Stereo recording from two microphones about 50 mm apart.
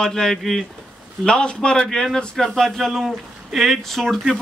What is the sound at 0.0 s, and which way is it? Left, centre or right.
Speech, centre.